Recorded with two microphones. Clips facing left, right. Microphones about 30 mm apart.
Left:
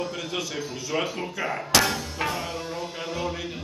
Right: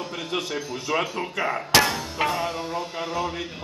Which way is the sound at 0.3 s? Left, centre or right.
Right.